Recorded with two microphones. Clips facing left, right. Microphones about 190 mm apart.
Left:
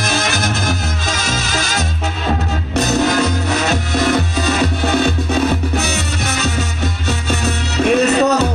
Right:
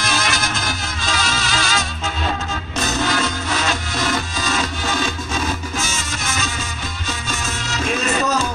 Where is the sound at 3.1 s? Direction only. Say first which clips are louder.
Left 6 dB; 40° left (ahead or behind).